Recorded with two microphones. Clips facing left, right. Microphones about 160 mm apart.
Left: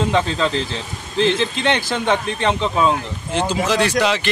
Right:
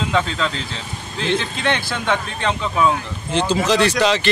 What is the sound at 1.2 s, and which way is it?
Speech, 25° left (ahead or behind).